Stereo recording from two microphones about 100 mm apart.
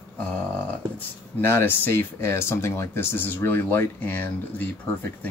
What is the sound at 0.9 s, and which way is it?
Speech, 25° left (ahead or behind).